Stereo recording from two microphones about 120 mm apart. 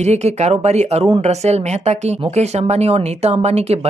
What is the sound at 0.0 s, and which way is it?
Speech, 70° right (ahead or behind).